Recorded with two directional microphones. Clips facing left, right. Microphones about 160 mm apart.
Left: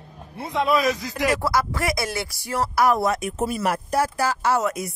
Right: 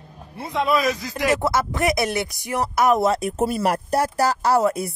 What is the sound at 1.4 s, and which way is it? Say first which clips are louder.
Speech: right 2 dB; 20° right (ahead or behind).